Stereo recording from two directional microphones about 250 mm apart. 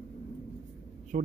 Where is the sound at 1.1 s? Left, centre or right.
Right.